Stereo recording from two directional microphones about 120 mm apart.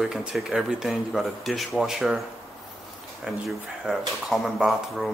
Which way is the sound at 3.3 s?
5° right (ahead or behind).